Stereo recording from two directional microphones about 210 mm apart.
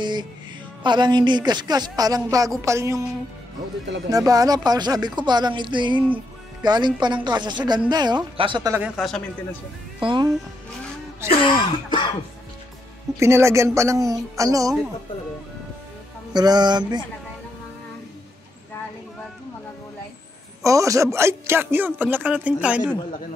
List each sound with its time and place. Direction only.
0.0 s music: 20° right (ahead or behind)
0.8 s a man's voice: 20° right (ahead or behind)
4.1 s speech: 15° right (ahead or behind)
8.9 s a man's voice: 5° left (ahead or behind)
10.0 s speech: 20° right (ahead or behind)
11.2 s cough: 25° left (ahead or behind)
13.2 s a man's voice: 15° right (ahead or behind)
16.3 s speech: 20° right (ahead or behind)
20.6 s a man's voice: 15° right (ahead or behind)